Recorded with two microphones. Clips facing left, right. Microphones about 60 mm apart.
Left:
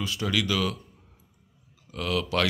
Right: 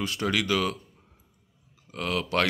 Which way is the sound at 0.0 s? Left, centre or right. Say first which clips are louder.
Right 1 dB; right.